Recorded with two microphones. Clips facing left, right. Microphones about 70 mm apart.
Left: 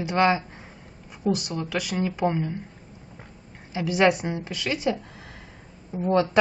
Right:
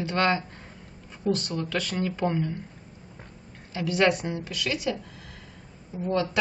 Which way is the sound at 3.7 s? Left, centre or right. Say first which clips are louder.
Left 2 dB; centre.